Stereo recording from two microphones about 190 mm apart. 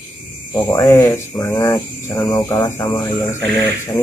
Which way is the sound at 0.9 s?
15° left (ahead or behind).